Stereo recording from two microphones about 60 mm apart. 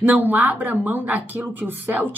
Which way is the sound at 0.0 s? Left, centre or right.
Right.